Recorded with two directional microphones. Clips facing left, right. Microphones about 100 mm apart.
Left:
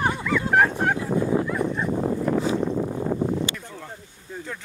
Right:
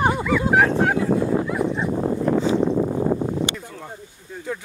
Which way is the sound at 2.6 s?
55° right (ahead or behind).